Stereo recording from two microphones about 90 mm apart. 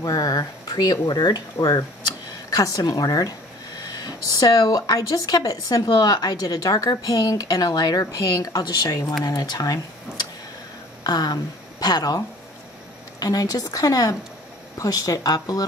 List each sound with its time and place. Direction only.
0.0 s speech: 40° left (ahead or behind)
11.1 s speech: 50° left (ahead or behind)
13.2 s speech: 45° left (ahead or behind)